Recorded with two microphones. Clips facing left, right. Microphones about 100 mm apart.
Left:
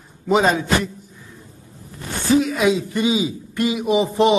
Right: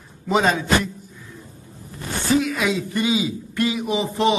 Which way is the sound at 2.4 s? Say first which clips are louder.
Left 4 dB; 20° left (ahead or behind).